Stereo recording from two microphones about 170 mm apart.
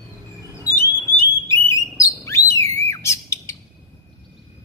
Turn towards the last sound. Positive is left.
turn(degrees=15)  # may be behind; listen again after turning